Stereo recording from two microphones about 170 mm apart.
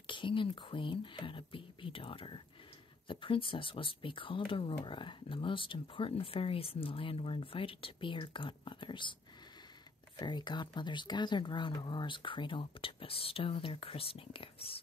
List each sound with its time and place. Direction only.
0.0 s speech: 30° left (ahead or behind)
10.1 s speech: 25° left (ahead or behind)